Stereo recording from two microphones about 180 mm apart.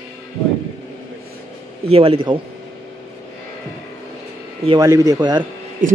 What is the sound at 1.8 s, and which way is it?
Speech, 30° right (ahead or behind).